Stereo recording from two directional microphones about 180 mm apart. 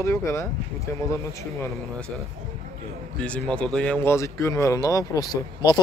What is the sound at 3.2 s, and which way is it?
Speech, 5° left (ahead or behind).